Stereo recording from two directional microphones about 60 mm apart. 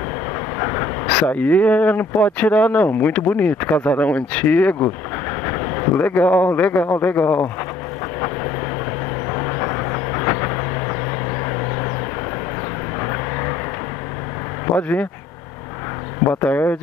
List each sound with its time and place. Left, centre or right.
0.6 s a sound: left
1.0 s speech: left
5.4 s speech: left
9.3 s vehicle: left
13.0 s vehicle: left
14.8 s speech: left
16.4 s speech: left